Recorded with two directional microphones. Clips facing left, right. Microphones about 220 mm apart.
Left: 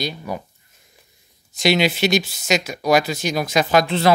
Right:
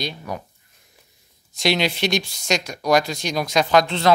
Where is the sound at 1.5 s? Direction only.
Centre (ahead or behind).